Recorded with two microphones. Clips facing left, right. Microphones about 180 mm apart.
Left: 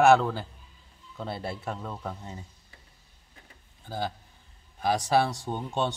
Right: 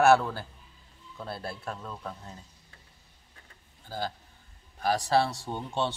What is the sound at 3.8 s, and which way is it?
Speech, 15° left (ahead or behind).